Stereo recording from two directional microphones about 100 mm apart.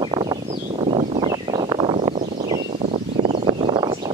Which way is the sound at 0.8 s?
60° right (ahead or behind).